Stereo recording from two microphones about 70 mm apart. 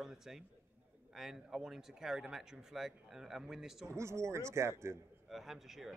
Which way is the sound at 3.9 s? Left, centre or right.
Right.